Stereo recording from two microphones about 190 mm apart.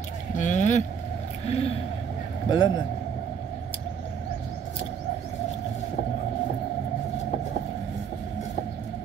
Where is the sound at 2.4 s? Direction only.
20° left (ahead or behind).